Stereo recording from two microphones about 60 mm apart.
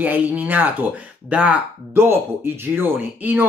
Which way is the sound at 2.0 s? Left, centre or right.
Right.